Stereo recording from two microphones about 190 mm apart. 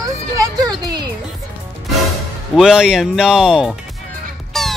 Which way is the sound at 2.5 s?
Centre (ahead or behind).